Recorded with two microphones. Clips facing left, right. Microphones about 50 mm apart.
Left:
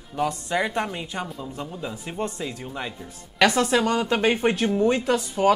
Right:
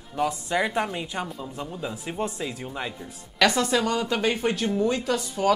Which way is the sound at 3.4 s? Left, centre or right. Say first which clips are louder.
Left 2 dB; centre.